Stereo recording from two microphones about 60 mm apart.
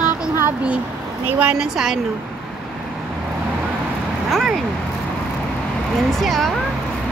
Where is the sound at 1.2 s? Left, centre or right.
Right.